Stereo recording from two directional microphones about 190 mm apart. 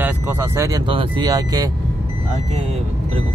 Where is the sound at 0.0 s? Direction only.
10° right (ahead or behind).